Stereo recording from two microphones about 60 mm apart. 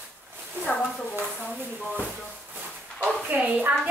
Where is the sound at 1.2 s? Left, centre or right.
Right.